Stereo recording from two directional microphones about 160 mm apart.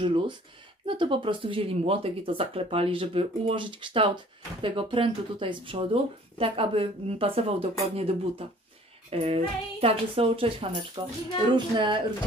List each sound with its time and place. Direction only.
0.8 s speech: 30° right (ahead or behind)